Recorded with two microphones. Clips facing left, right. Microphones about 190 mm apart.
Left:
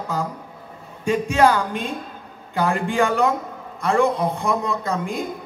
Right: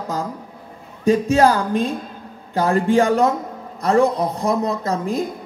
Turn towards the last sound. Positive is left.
turn(degrees=-40)  # may be behind; listen again after turning